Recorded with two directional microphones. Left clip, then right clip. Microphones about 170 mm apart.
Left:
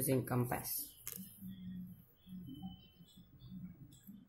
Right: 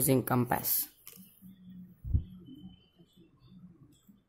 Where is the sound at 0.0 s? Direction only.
70° right (ahead or behind).